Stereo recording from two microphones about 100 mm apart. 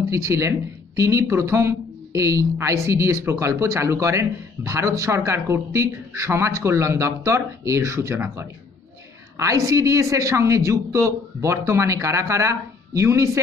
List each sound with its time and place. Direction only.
0.1 s speech: 30° right (ahead or behind)